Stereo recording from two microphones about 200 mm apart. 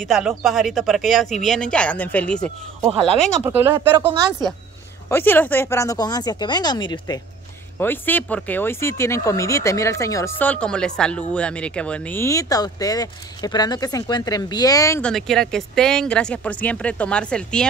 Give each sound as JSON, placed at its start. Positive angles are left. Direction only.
{"t": 0.0, "sound": "speech", "side_deg": 0}
{"t": 3.4, "sound": "speech", "side_deg": -10}
{"t": 3.9, "sound": "a woman's voice", "side_deg": -25}
{"t": 5.1, "sound": "speech", "side_deg": 10}
{"t": 7.8, "sound": "speech", "side_deg": 10}
{"t": 15.0, "sound": "speech", "side_deg": 5}